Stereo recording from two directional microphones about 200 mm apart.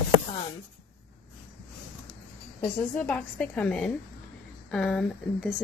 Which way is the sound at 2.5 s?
5° left (ahead or behind).